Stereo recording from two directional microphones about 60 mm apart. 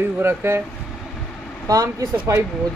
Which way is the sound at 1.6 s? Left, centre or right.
Right.